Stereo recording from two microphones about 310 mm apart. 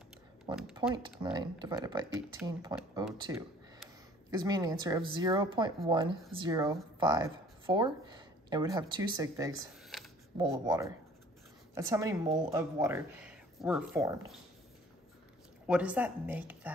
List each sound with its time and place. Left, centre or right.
0.5 s speech: centre
9.9 s a sound: centre
10.3 s speech: centre
15.6 s a woman's voice: centre